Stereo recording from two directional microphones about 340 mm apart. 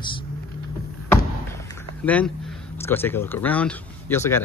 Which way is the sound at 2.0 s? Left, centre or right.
Centre.